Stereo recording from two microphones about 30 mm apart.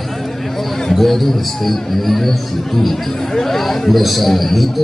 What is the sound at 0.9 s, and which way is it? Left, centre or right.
A man's voice, centre.